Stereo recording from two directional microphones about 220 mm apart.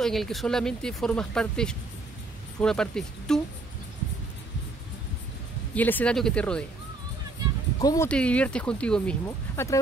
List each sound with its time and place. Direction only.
0.0 s speech: centre (ahead or behind)
5.8 s speech: 5° left (ahead or behind)
7.8 s speech: 15° left (ahead or behind)
8.1 s speech: 5° left (ahead or behind)